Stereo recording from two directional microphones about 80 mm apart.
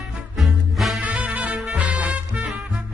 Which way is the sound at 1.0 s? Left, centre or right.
Centre.